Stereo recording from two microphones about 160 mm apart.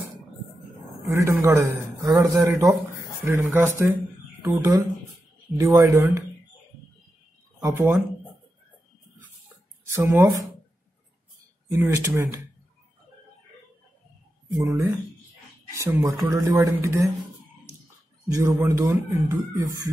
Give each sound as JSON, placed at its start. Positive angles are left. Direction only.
{"t": 1.0, "sound": "a man's voice", "side_deg": -15}
{"t": 7.6, "sound": "a man's voice", "side_deg": -15}
{"t": 9.9, "sound": "a man's voice", "side_deg": -15}
{"t": 11.7, "sound": "a man's voice", "side_deg": -15}
{"t": 14.5, "sound": "a man's voice", "side_deg": -15}
{"t": 18.3, "sound": "a man's voice", "side_deg": -20}